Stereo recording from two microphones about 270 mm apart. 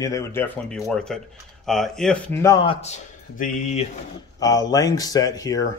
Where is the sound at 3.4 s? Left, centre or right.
Left.